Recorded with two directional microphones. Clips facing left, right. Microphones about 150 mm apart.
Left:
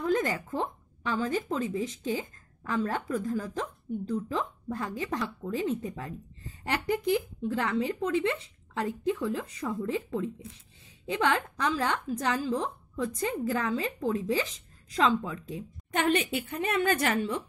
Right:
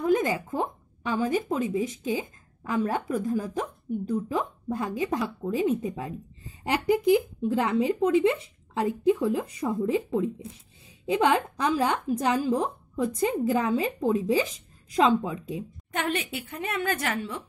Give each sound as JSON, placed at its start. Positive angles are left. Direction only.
{"t": 0.0, "sound": "a woman's voice", "side_deg": -15}
{"t": 15.9, "sound": "a woman's voice", "side_deg": 0}